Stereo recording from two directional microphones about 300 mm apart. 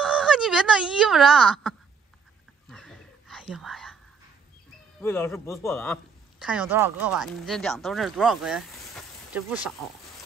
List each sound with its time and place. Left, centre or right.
0.0 s speech: centre
2.7 s a sound: centre
5.0 s a man's voice: centre
6.4 s speech: centre